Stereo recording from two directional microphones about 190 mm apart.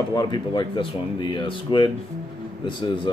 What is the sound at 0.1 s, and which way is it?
Speech, 20° left (ahead or behind).